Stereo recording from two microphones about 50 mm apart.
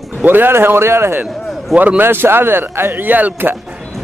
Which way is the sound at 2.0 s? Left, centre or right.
Right.